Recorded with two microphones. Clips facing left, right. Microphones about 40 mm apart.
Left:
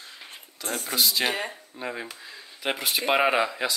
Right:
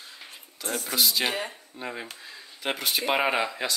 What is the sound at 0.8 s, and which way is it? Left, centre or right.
Speech, centre.